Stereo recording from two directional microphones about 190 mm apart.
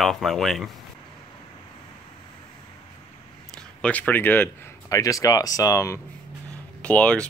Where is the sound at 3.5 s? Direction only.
5° left (ahead or behind).